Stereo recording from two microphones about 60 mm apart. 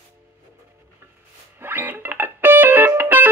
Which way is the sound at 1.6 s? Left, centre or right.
Right.